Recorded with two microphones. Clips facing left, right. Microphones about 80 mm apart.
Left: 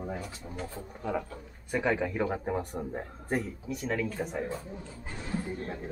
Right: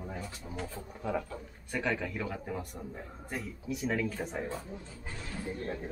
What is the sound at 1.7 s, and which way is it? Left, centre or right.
Speech, centre.